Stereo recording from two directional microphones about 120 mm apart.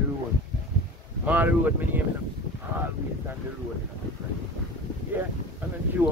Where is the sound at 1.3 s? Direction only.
15° right (ahead or behind).